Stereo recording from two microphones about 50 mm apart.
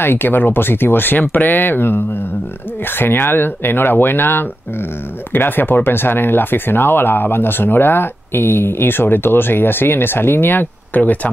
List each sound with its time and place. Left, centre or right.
0.0 s speech: left